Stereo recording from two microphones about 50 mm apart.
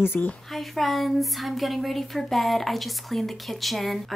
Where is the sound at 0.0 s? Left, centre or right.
Left.